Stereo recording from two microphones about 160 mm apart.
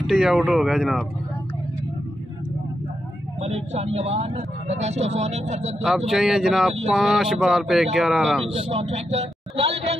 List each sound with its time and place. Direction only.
0.0 s speech: centre (ahead or behind)
3.3 s speech: 40° right (ahead or behind)
5.8 s speech: centre (ahead or behind)
8.5 s a man's voice: 40° right (ahead or behind)